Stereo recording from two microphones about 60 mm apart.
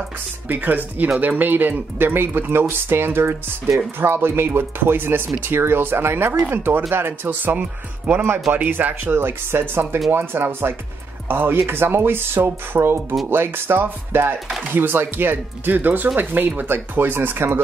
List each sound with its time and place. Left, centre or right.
0.5 s speech: right
6.9 s music: right
7.2 s speech: right
12.4 s music: right
13.3 s speech: right